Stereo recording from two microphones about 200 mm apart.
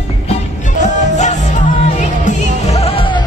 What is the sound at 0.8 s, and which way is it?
Music, 35° left (ahead or behind).